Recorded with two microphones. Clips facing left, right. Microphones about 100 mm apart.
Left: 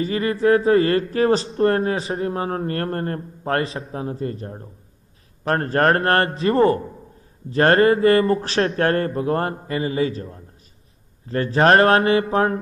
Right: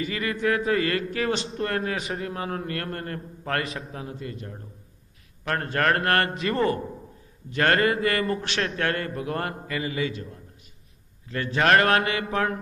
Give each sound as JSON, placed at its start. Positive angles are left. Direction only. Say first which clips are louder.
{"t": 0.0, "sound": "speech", "louder": "left 7 dB", "side_deg": 35}